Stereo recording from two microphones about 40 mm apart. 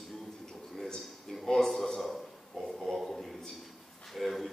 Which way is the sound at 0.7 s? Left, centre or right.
Centre.